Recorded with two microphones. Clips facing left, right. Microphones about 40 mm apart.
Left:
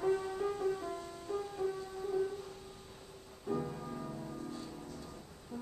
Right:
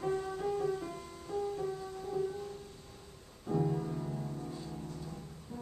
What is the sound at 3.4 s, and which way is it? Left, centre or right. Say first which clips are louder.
Music: right 4 dB; centre.